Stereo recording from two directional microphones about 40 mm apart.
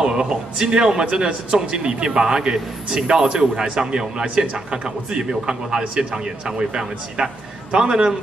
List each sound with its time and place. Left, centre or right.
0.0 s a man's voice: right